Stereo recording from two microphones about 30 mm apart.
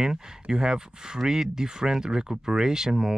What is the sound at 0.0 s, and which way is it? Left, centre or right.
Speech, centre.